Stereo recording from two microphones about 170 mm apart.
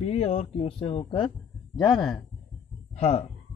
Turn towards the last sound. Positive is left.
turn(degrees=40)  # may be behind; listen again after turning